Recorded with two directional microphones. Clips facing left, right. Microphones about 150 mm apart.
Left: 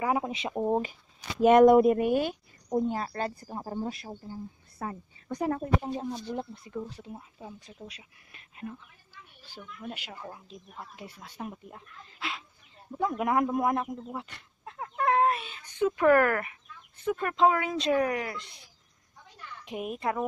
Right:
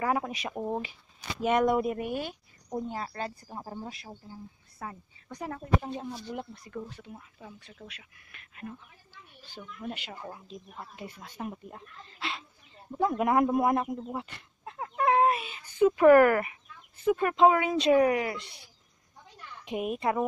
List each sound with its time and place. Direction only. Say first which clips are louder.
0.0 s speech: left 1 dB; 15° left (ahead or behind)
1.4 s speech: left 8 dB; 45° left (ahead or behind); by 2.3 s 80° left
2.9 s a woman's voice: left 4 dB; 55° left (ahead or behind)
5.9 s speech: left 3 dB; 25° left (ahead or behind)
9.6 s speech: right 2 dB; 5° left (ahead or behind)
19.6 s speech: right 3 dB; 5° right (ahead or behind)